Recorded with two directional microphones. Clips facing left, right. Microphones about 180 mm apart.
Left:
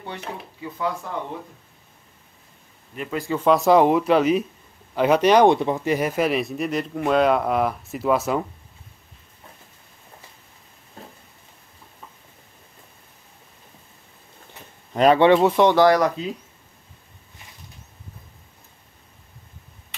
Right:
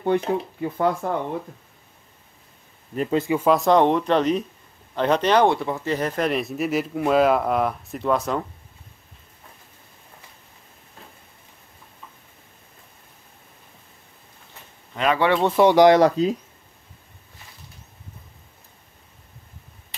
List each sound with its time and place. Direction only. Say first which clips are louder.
0.6 s speech: right 5 dB; 50° right (ahead or behind)
3.0 s speech: right 6 dB; 30° right (ahead or behind)
3.3 s speech: left 3 dB; 5° right (ahead or behind)
15.1 s speech: left 4 dB; 20° left (ahead or behind)
15.5 s speech: right 2 dB; 15° right (ahead or behind)
16.0 s speech: right 5 dB; 40° right (ahead or behind)